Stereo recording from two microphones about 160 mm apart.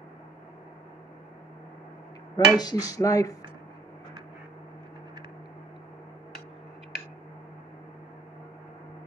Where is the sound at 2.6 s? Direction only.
25° left (ahead or behind).